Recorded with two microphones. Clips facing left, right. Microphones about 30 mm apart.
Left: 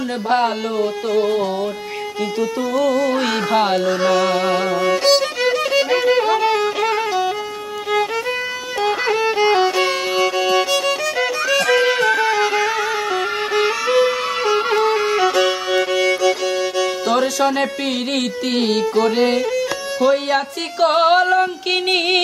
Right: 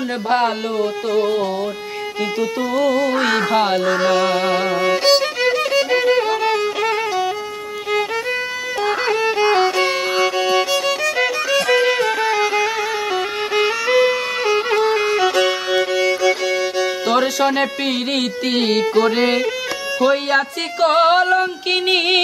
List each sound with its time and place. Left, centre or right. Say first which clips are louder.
0.3 s music: even; centre
2.7 s music: even; centre
6.0 s violin: left 1 dB; centre
8.8 s violin: left 1 dB; centre
13.8 s music: right 1 dB; centre